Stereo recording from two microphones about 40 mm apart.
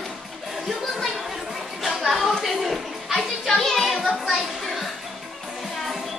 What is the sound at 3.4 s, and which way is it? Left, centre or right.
Music, centre.